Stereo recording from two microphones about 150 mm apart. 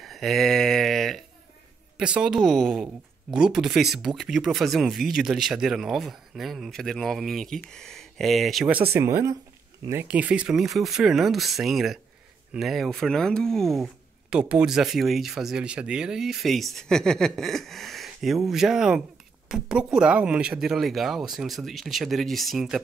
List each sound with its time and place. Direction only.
0.0 s a sound: centre (ahead or behind)
2.0 s speech: 5° right (ahead or behind)
8.9 s speech: 15° right (ahead or behind); by 22.8 s centre (ahead or behind)